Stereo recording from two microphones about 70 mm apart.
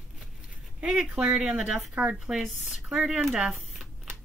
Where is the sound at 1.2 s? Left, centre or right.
Centre.